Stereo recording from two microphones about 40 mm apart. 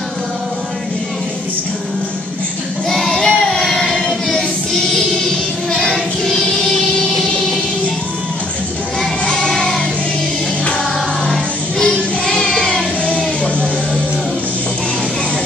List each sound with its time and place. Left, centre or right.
2.9 s singing: centre
3.9 s choir: centre
5.7 s child singing: centre
9.2 s music: left
11.8 s child singing: centre
13.2 s music: left